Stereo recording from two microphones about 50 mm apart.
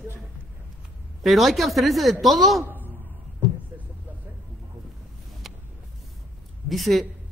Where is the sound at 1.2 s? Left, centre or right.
Centre.